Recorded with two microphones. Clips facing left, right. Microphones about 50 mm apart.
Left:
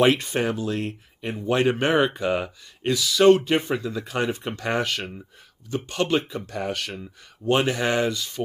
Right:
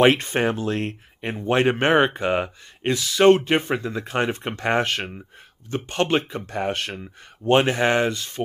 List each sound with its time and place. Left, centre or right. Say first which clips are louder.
0.0 s speech: right 2 dB; right